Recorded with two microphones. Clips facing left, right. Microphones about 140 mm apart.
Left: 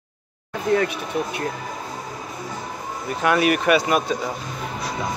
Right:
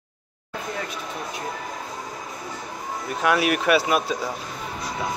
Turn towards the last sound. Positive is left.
turn(degrees=0)  # may be behind; listen again after turning